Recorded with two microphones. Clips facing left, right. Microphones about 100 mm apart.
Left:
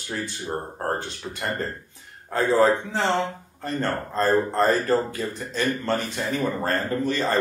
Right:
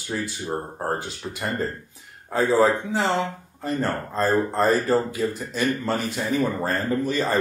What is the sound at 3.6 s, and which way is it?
Speech, 10° right (ahead or behind).